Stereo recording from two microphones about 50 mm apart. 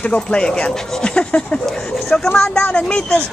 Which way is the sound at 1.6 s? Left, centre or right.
Centre.